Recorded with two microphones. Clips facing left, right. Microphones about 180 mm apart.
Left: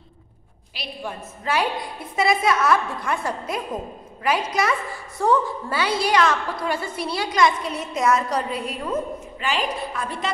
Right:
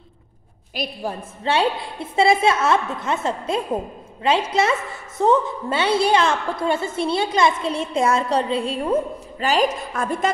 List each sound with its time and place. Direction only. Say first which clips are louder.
0.8 s a woman's voice: right 8 dB; 45° right (ahead or behind)
1.4 s a woman's voice: right 3 dB; 30° right (ahead or behind); by 10.3 s 45° right (ahead or behind)